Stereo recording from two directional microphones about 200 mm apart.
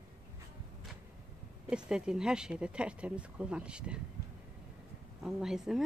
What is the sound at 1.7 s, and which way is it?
Speech, 5° right (ahead or behind).